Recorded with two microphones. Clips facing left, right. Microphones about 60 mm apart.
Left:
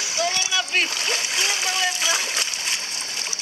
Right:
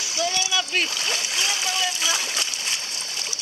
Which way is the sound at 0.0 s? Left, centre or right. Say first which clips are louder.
Left 1 dB; left.